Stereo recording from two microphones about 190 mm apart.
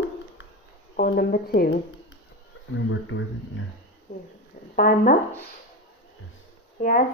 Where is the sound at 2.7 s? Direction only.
90° left.